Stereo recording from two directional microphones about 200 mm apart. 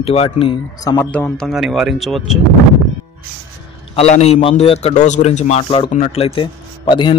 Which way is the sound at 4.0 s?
35° left (ahead or behind).